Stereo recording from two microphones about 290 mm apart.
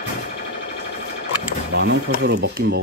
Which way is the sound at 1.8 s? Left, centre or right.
Right.